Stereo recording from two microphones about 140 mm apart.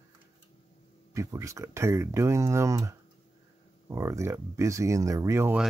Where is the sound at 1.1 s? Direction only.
20° right (ahead or behind).